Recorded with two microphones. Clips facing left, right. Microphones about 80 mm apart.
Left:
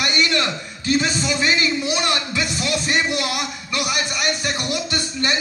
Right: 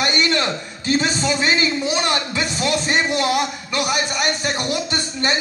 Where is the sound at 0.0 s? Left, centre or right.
Right.